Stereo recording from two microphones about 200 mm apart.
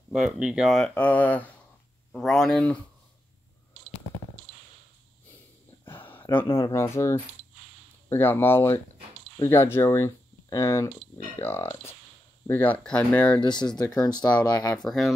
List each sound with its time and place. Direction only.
0.1 s speech: 5° right (ahead or behind)
5.9 s a sound: 10° left (ahead or behind)
6.5 s speech: 15° left (ahead or behind)
13.4 s speech: 20° left (ahead or behind)
14.8 s speech: centre (ahead or behind)